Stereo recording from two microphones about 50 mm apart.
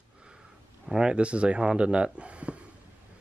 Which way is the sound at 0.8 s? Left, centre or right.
Centre.